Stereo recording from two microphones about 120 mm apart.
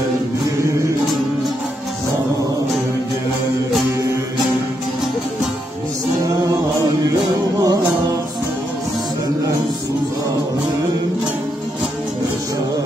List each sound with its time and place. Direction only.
6.2 s music: 30° right (ahead or behind)